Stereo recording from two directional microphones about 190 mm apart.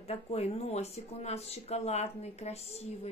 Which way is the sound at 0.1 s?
35° left (ahead or behind).